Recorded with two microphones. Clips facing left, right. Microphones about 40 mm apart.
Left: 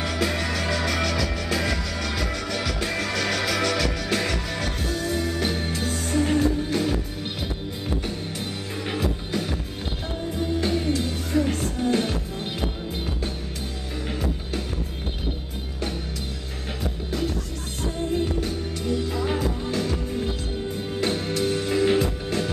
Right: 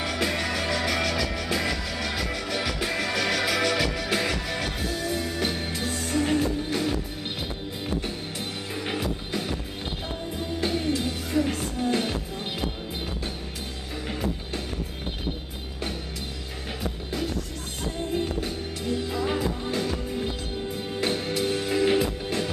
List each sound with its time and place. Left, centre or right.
0.0 s music: centre
18.1 s music: centre